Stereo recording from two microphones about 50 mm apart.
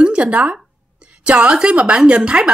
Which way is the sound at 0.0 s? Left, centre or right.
Right.